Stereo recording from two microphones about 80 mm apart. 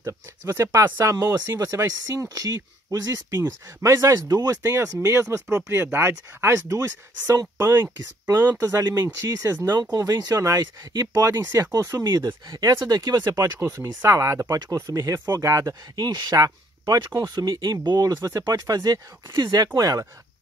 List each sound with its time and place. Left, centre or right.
0.0 s speech: right
0.9 s speech: right
7.6 s speech: right
9.0 s speech: right
13.6 s speech: right